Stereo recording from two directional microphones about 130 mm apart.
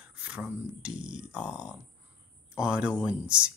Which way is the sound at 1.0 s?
35° right (ahead or behind).